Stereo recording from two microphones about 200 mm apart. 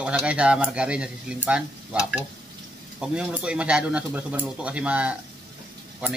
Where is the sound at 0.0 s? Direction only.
5° right (ahead or behind).